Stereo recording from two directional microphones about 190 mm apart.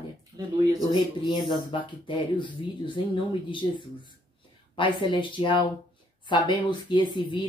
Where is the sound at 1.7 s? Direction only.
25° left (ahead or behind).